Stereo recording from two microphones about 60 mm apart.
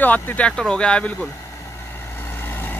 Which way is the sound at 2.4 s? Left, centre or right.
Left.